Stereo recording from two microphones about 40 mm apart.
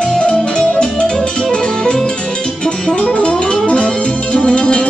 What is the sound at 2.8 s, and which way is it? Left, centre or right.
Music, left.